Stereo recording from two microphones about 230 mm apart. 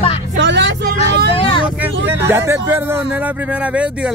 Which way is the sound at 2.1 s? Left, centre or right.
Centre.